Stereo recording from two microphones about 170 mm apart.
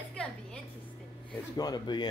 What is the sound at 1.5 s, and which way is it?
Speech, 25° left (ahead or behind).